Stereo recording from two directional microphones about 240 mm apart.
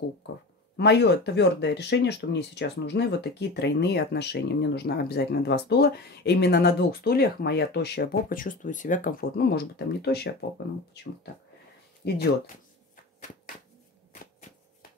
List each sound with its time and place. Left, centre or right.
0.7 s speech: left